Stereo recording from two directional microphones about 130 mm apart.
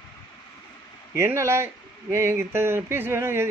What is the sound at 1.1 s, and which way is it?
Speech, 20° right (ahead or behind).